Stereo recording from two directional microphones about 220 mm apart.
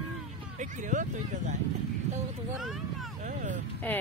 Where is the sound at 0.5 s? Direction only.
35° right (ahead or behind).